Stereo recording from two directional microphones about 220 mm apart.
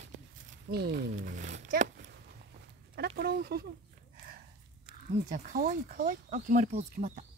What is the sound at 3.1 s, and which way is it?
Speech, 45° right (ahead or behind).